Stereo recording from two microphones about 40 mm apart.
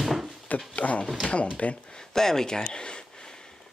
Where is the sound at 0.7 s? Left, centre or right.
Left.